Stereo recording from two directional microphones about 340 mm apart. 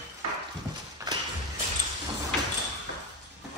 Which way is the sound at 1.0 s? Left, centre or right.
Centre.